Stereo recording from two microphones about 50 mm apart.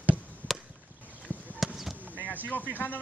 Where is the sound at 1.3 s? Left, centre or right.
Left.